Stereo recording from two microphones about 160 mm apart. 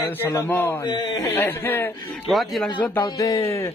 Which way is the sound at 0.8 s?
25° left (ahead or behind).